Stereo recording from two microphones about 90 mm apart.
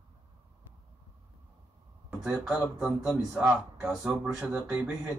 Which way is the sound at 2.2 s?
5° right (ahead or behind).